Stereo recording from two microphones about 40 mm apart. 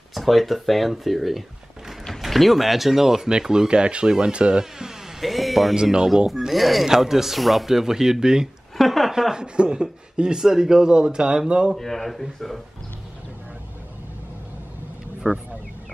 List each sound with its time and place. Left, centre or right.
0.1 s speech: centre
5.2 s a sound: centre
6.0 s speech: centre
8.7 s a sound: centre
9.3 s speech: centre
11.8 s speech: centre
15.2 s speech: centre